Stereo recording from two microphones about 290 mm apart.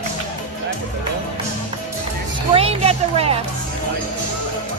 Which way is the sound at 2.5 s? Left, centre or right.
Right.